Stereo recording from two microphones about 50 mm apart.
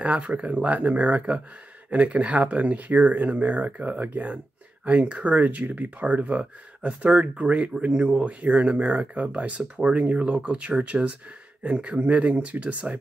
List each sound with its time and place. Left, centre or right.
0.0 s speech: right